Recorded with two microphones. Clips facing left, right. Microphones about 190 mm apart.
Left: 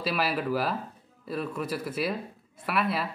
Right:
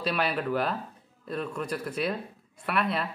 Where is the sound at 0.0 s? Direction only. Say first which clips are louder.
Even; 5° left (ahead or behind).